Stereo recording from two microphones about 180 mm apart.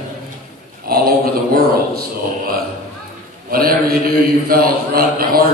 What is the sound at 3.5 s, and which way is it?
Mantra, 55° right (ahead or behind).